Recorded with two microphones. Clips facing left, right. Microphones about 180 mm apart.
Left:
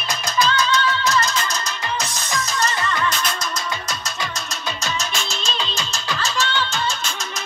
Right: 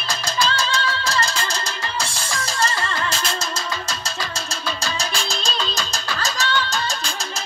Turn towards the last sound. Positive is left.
turn(degrees=-40)  # may be behind; listen again after turning